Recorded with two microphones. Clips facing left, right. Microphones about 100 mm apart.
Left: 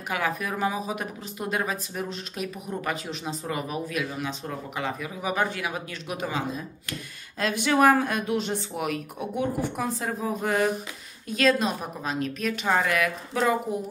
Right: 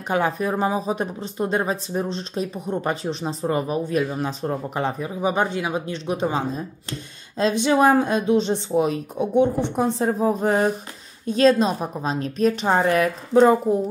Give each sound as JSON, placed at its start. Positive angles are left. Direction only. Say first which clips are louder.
{"t": 0.1, "sound": "speech", "louder": "right 7 dB", "side_deg": -30}